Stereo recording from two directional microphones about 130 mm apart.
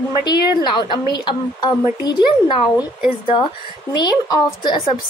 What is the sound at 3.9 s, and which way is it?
Speech, 35° left (ahead or behind).